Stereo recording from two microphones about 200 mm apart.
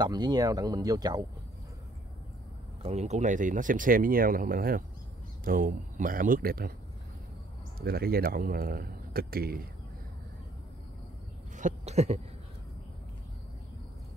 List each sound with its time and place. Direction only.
0.0 s speech: 20° right (ahead or behind)
2.8 s speech: 35° right (ahead or behind); by 6.7 s 50° right (ahead or behind)
7.8 s speech: 50° right (ahead or behind)
11.5 s a sound: 35° right (ahead or behind)